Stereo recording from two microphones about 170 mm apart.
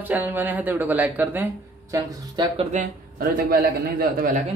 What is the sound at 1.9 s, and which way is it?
Speech, 20° right (ahead or behind).